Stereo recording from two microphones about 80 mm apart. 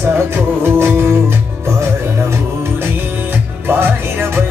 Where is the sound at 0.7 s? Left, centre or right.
Right.